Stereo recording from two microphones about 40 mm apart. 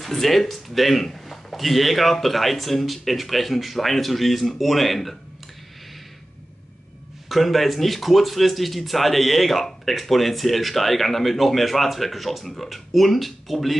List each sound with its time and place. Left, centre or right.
0.0 s speech: centre
7.2 s speech: centre